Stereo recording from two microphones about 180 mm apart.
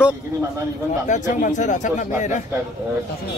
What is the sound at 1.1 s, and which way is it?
Speech, 45° left (ahead or behind).